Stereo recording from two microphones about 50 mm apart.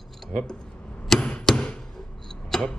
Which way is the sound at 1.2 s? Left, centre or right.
Centre.